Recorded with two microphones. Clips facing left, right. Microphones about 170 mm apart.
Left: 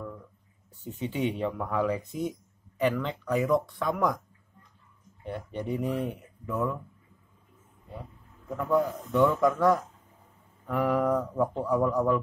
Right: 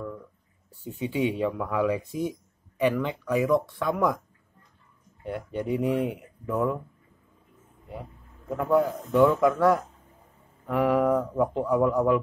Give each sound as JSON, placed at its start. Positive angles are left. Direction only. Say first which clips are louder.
{"t": 0.8, "sound": "speech", "louder": "right 3 dB", "side_deg": -15}
{"t": 5.2, "sound": "speech", "louder": "right 3 dB", "side_deg": -10}
{"t": 8.7, "sound": "speech", "louder": "right 3 dB", "side_deg": -5}